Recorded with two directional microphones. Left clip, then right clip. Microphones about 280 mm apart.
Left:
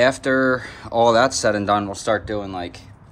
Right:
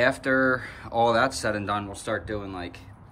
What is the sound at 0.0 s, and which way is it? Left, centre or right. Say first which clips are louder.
Speech: left 5 dB; centre.